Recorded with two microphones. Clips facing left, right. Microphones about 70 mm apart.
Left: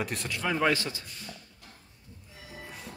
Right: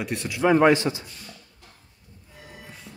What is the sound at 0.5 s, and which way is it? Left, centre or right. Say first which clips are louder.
Speech: right 9 dB; right.